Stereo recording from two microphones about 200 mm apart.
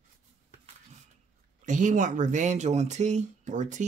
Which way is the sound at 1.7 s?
40° right (ahead or behind).